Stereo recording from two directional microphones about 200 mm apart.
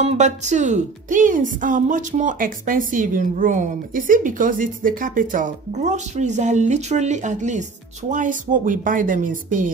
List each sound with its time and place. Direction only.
0.0 s a woman's voice: 35° right (ahead or behind)